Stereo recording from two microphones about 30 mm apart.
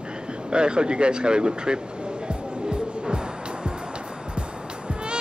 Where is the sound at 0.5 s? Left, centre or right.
Right.